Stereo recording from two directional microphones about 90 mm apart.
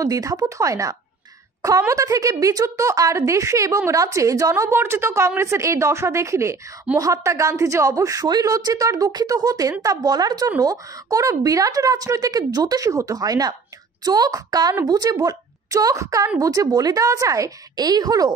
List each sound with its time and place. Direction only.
0.0 s a woman's voice: 40° right (ahead or behind)